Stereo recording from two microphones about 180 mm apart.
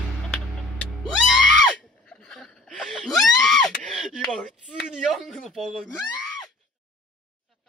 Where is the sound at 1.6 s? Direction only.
5° left (ahead or behind).